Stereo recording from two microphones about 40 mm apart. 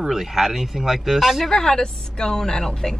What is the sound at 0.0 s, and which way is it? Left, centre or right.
Speech, centre.